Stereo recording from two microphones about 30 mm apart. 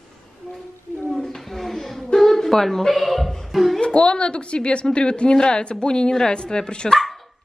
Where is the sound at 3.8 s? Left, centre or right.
Left.